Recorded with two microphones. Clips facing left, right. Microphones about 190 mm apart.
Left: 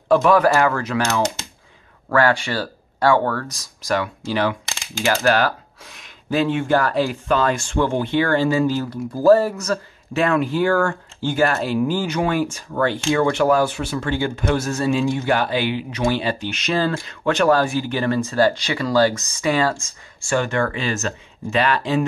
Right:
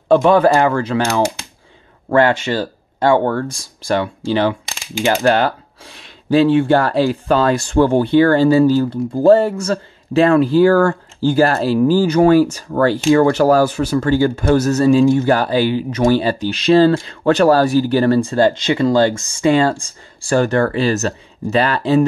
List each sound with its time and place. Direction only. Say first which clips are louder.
0.1 s speech: right 4 dB; 25° right (ahead or behind)